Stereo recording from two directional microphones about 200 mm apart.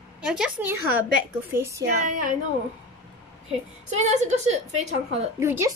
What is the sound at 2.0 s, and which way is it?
Speech, 45° right (ahead or behind).